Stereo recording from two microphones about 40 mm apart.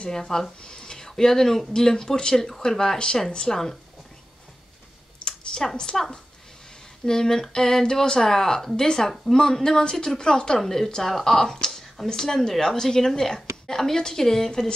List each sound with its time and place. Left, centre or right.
0.1 s a woman's voice: centre
5.2 s a sound: centre
5.8 s a woman's voice: centre
10.6 s a woman's voice: centre